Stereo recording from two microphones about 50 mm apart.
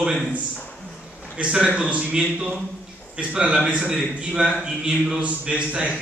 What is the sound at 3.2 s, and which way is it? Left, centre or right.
A man's voice, right.